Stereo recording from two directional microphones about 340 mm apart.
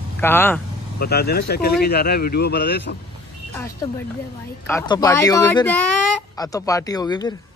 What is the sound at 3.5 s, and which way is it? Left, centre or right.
Speech, centre.